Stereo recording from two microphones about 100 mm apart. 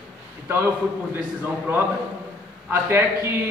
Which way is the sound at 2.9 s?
25° right (ahead or behind).